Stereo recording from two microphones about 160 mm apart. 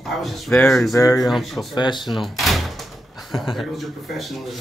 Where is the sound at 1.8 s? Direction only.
30° left (ahead or behind).